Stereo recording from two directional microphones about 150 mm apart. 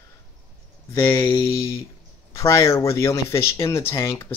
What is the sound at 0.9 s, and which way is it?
Speech, 15° left (ahead or behind).